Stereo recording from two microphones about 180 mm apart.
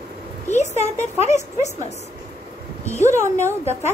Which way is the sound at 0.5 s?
40° left (ahead or behind).